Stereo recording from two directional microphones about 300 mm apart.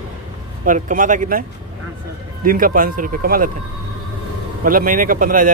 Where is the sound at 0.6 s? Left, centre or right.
Right.